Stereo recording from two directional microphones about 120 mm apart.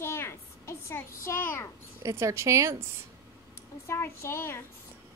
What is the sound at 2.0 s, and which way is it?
Speech, 25° right (ahead or behind).